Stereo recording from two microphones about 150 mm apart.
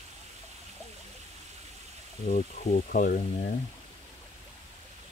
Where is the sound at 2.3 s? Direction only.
55° left (ahead or behind).